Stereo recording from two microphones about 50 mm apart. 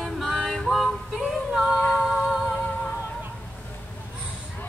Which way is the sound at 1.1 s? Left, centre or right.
Centre.